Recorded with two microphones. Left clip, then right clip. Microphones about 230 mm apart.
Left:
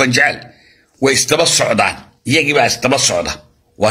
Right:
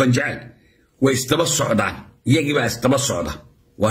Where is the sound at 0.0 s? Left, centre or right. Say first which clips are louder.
Left 7 dB; centre.